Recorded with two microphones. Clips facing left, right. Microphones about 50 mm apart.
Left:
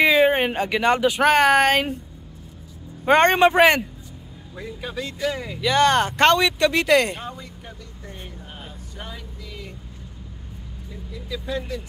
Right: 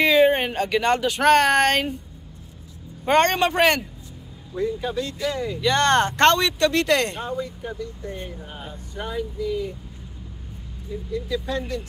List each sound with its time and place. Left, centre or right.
0.0 s speech: centre
3.1 s speech: centre
8.4 s a sound: centre
10.9 s speech: centre